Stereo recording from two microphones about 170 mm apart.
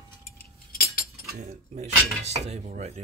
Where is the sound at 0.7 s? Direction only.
65° left (ahead or behind).